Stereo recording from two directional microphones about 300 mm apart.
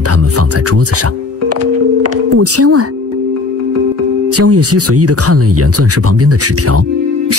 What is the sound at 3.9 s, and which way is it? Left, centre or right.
Speech, right.